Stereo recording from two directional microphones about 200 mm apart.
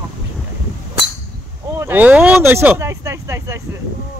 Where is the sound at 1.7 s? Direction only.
10° right (ahead or behind).